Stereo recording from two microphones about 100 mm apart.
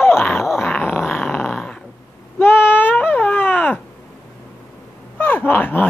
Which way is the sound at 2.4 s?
20° left (ahead or behind).